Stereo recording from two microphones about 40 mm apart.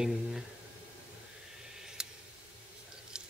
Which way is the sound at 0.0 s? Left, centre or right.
Centre.